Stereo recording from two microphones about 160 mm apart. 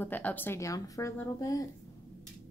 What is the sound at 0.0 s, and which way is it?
Speech, 10° left (ahead or behind).